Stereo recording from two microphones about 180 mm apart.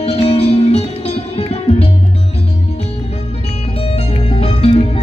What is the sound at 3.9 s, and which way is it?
Music, 35° left (ahead or behind).